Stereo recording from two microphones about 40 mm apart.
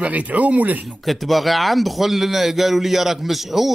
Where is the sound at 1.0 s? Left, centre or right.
Centre.